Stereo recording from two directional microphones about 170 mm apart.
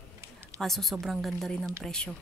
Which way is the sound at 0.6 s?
Centre (ahead or behind).